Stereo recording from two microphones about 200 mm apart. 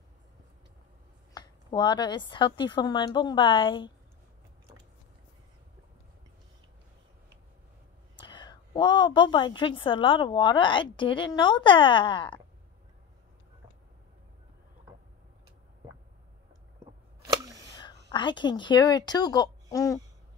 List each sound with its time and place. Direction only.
1.3 s a woman's voice: 20° left (ahead or behind)
8.2 s a woman's voice: 20° left (ahead or behind)
17.3 s a sound: 15° right (ahead or behind)
18.1 s a woman's voice: 25° left (ahead or behind)